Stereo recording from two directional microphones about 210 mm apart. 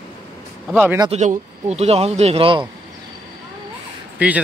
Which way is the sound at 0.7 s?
5° right (ahead or behind).